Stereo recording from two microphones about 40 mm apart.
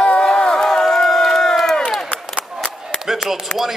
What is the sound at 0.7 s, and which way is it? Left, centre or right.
Crowd, centre.